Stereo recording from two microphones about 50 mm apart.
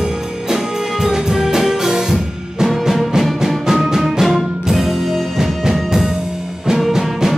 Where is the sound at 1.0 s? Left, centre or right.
Centre.